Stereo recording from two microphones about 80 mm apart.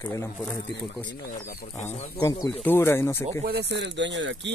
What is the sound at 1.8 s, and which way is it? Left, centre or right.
Speech, left.